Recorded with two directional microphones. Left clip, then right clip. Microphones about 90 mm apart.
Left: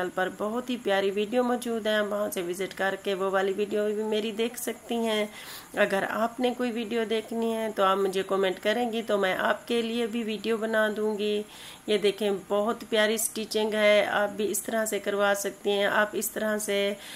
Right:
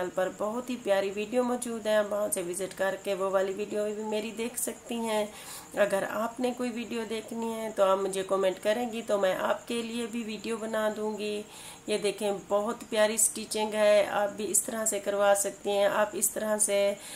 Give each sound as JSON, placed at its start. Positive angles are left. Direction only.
{"t": 0.0, "sound": "a woman's voice", "side_deg": 30}